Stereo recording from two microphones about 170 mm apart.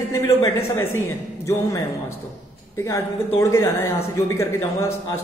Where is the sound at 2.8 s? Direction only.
15° left (ahead or behind).